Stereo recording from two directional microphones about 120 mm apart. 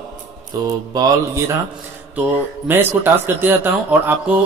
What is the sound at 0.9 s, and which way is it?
Speech, 30° right (ahead or behind).